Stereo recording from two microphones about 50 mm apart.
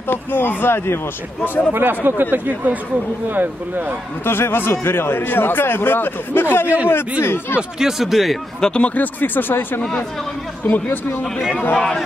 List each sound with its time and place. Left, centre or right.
0.1 s a man's voice: left
1.7 s speech: right
4.2 s a man's voice: left
7.8 s speech: centre
8.5 s speech: centre
8.8 s speech: left
11.7 s speech: centre